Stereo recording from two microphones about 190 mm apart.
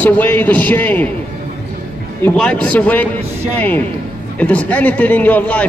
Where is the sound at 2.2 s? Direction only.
5° left (ahead or behind).